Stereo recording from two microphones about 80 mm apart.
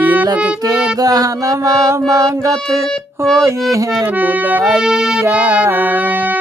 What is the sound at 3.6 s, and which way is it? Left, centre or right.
Music, right.